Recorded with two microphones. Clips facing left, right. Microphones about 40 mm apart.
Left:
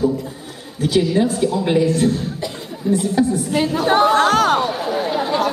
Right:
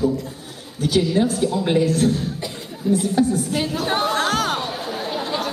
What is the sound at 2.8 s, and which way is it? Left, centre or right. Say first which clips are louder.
Speech: left 1 dB; centre.